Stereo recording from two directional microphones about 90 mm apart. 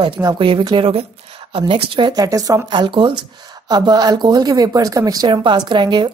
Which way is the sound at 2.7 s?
65° right (ahead or behind).